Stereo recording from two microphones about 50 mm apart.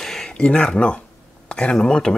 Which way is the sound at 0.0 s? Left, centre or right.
Centre.